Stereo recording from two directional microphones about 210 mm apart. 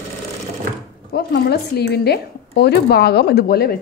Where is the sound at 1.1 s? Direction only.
50° left (ahead or behind).